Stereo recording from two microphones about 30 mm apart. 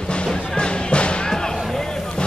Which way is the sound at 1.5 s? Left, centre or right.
Centre.